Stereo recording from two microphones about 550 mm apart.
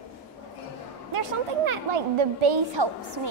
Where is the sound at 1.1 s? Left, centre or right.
Right.